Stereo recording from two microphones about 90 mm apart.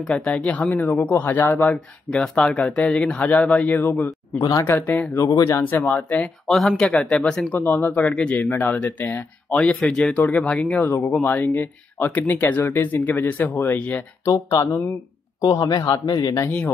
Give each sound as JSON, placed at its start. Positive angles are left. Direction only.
{"t": 0.0, "sound": "speech", "side_deg": 10}
{"t": 1.7, "sound": "speech", "side_deg": 10}
{"t": 4.4, "sound": "a man's voice", "side_deg": 45}
{"t": 4.6, "sound": "speech", "side_deg": 20}
{"t": 5.3, "sound": "speech", "side_deg": 35}
{"t": 5.7, "sound": "speech", "side_deg": 15}
{"t": 6.4, "sound": "speech", "side_deg": 0}
{"t": 7.6, "sound": "speech", "side_deg": 20}
{"t": 14.2, "sound": "a man's voice", "side_deg": 40}
{"t": 16.4, "sound": "speech", "side_deg": 20}